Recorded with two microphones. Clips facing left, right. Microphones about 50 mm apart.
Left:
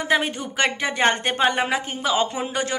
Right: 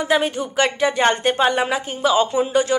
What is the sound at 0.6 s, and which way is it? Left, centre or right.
A woman's voice, left.